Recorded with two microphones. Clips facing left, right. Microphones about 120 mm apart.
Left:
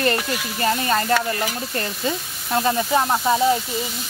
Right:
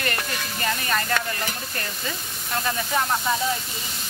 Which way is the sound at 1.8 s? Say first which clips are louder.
Left 10 dB; 30° left (ahead or behind).